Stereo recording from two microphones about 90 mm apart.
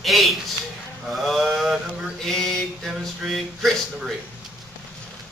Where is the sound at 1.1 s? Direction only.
Centre (ahead or behind).